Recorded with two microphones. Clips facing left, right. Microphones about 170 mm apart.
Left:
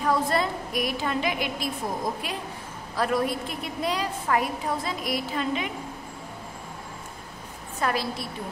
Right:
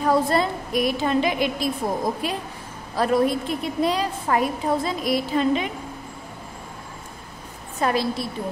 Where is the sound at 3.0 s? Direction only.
25° right (ahead or behind).